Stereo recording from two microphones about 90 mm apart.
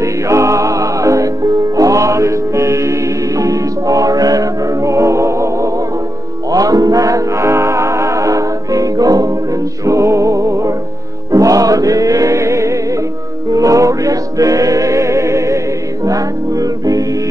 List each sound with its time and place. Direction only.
0.0 s music: 35° right (ahead or behind)